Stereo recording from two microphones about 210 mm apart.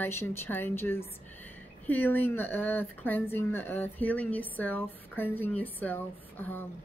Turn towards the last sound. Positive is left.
turn(degrees=10)  # may be behind; listen again after turning